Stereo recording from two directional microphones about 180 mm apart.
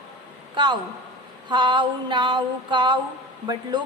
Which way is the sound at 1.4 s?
25° right (ahead or behind).